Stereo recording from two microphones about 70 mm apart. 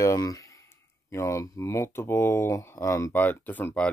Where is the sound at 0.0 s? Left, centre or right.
Left.